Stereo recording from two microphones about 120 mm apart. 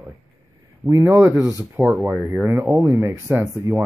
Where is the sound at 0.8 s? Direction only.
25° right (ahead or behind).